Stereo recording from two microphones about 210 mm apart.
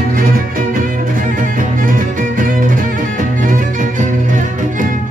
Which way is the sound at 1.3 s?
40° right (ahead or behind).